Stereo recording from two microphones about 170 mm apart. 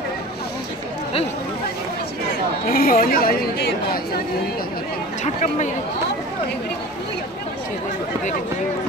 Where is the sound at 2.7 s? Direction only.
60° left (ahead or behind).